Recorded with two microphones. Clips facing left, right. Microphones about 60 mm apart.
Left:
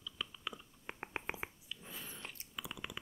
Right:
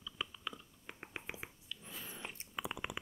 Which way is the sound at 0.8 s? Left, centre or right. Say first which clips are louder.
Left 5 dB; left.